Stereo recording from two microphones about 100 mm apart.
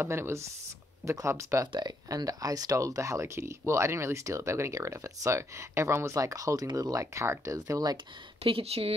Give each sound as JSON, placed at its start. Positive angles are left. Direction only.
{"t": 0.0, "sound": "speech", "side_deg": -25}
{"t": 1.7, "sound": "speech", "side_deg": -45}
{"t": 8.5, "sound": "speech", "side_deg": -80}